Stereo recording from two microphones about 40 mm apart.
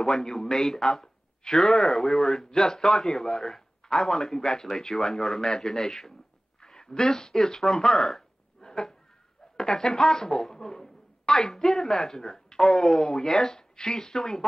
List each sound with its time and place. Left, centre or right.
0.0 s speech: centre
8.1 s a sound: centre
9.6 s speech: centre